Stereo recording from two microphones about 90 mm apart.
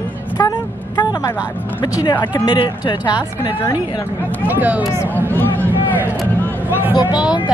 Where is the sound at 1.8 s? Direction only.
50° left (ahead or behind).